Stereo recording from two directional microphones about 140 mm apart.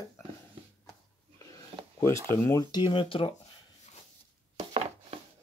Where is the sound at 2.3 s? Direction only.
20° left (ahead or behind); by 3.3 s 40° left (ahead or behind).